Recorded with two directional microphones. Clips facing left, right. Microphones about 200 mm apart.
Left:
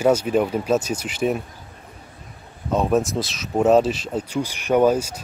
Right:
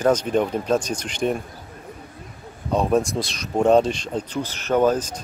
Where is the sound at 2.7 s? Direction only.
Centre (ahead or behind).